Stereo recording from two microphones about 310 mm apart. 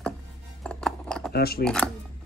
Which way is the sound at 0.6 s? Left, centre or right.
Centre.